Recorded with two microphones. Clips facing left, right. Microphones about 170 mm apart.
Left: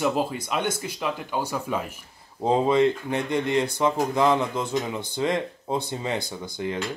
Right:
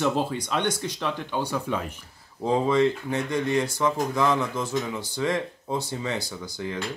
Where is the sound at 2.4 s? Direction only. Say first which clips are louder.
Left 2 dB; 20° left (ahead or behind).